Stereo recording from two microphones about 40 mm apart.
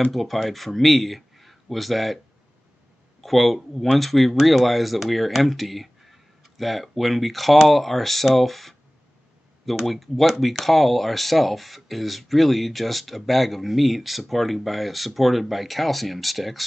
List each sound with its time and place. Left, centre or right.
0.1 s speech: centre
3.2 s speech: centre
9.8 s speech: centre